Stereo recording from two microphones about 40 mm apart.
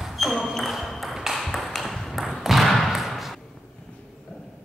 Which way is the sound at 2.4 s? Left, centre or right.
Centre.